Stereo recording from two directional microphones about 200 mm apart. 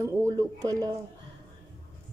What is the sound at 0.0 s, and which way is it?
Speech, 15° right (ahead or behind).